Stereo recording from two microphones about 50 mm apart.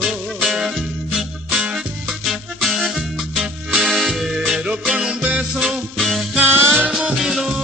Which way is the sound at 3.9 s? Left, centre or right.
Centre.